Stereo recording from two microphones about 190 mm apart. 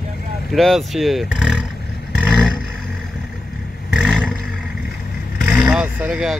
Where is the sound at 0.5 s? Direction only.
Centre (ahead or behind).